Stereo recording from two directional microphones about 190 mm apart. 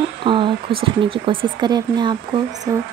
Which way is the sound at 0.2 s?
25° right (ahead or behind).